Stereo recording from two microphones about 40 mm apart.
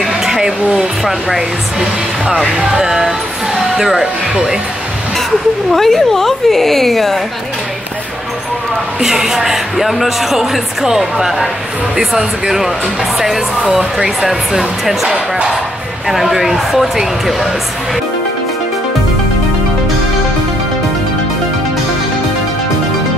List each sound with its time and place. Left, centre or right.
0.2 s a sound: centre
1.8 s speech: centre
5.7 s a woman's voice: centre
9.0 s speech: centre
16.1 s speech: centre